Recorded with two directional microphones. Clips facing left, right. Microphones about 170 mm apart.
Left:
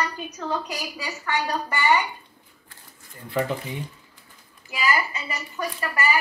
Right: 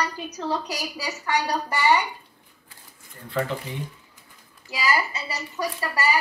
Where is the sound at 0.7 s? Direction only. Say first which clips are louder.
Right 1 dB; 40° right (ahead or behind).